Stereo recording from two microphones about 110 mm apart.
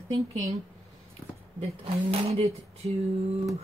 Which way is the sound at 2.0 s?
70° right (ahead or behind).